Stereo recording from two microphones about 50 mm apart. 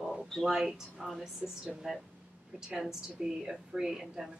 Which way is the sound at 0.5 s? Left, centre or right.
Centre.